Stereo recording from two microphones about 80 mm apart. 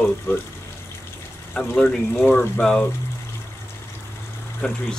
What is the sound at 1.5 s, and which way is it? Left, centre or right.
Speech, centre.